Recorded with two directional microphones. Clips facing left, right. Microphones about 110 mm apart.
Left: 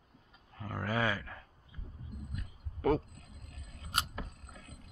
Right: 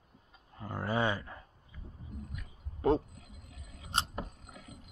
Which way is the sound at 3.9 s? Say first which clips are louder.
Right 2 dB; 30° right (ahead or behind).